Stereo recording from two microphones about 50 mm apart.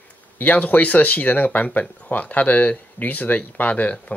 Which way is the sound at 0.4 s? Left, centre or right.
Left.